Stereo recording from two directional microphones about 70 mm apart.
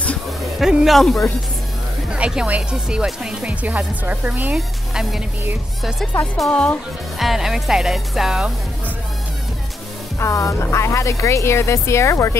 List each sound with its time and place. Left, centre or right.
0.6 s speech: centre
0.9 s speech: centre
2.0 s speech: centre
3.6 s speech: right
4.6 s speech: centre
6.5 s speech: centre
7.2 s speech: centre
10.1 s speech: left